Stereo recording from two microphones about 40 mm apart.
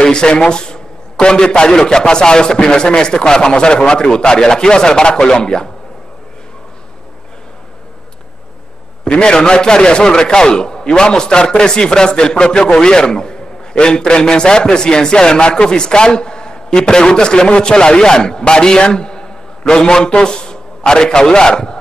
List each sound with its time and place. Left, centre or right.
0.0 s a man's voice: left
9.0 s a man's voice: left